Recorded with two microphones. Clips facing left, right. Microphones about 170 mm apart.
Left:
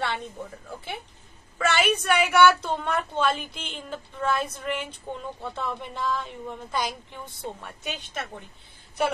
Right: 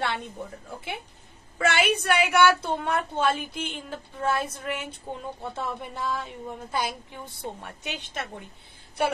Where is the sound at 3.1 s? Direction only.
50° right (ahead or behind).